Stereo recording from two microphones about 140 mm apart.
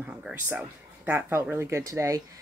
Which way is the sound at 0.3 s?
10° right (ahead or behind).